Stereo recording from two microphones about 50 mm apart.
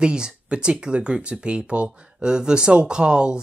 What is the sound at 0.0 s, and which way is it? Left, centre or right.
Speech, centre.